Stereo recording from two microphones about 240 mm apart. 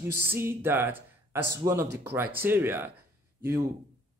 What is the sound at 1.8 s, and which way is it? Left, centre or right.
Speech, right.